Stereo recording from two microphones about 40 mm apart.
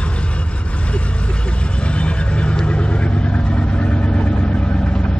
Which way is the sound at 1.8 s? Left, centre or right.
Left.